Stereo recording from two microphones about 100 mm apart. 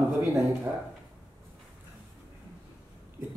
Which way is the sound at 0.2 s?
20° right (ahead or behind).